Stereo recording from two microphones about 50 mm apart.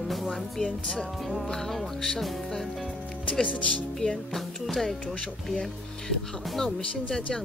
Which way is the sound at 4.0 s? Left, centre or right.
Centre.